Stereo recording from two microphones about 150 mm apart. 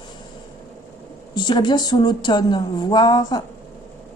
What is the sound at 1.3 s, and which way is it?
Speech, 30° left (ahead or behind).